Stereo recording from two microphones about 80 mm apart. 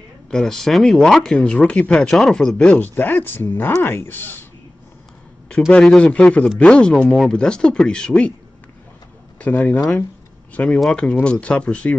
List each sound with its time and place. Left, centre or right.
0.3 s speech: centre
2.8 s speech: left
6.0 s speech: centre
9.4 s speech: left